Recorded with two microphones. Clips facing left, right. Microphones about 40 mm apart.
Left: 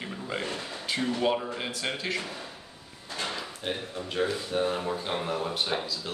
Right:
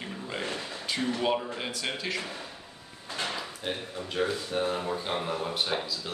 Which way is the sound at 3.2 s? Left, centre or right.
Centre.